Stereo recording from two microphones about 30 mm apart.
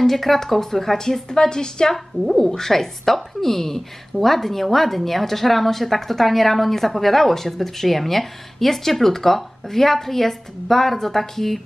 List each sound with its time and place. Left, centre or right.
0.0 s speech: centre
1.3 s a woman's voice: left; by 11.6 s centre